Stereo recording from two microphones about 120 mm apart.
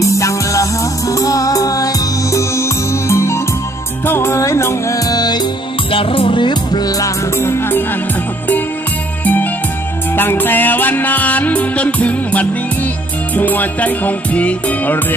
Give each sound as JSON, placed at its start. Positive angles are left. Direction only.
{"t": 0.0, "sound": "music", "side_deg": 25}
{"t": 7.3, "sound": "music", "side_deg": 20}
{"t": 9.2, "sound": "music", "side_deg": 15}